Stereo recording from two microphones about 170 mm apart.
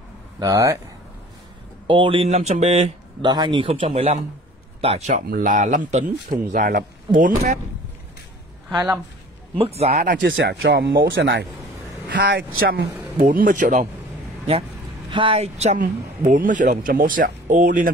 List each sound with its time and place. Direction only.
0.4 s speech: 20° right (ahead or behind)
1.9 s speech: 30° right (ahead or behind)
5.2 s speech: 55° right (ahead or behind)
8.7 s speech: 15° right (ahead or behind)
9.6 s speech: 35° right (ahead or behind); by 10.3 s 55° right (ahead or behind)
10.3 s speech: 85° right; by 13.8 s 50° right (ahead or behind)
15.0 s speech: 30° right (ahead or behind); by 17.8 s 50° right (ahead or behind)